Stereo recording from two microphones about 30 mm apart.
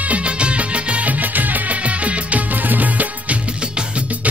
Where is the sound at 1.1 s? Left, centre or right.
Right.